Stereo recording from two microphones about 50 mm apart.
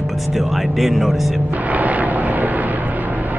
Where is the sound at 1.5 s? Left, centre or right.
Right.